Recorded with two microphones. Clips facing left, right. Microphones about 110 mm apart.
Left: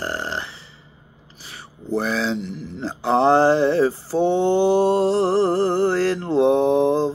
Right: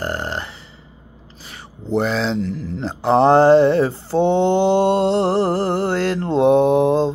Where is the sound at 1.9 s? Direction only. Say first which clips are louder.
Right 3 dB; 25° right (ahead or behind).